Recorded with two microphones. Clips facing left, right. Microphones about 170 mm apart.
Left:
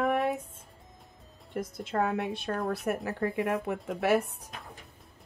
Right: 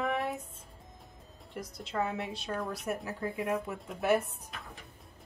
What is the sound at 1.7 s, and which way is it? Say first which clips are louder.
Speech: left 4 dB; 55° left (ahead or behind).